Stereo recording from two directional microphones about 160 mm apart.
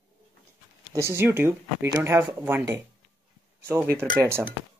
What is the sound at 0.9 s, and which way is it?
Speech, 15° right (ahead or behind).